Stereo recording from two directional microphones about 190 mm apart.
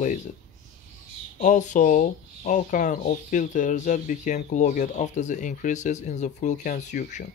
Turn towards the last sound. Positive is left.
turn(degrees=40)  # may be behind; listen again after turning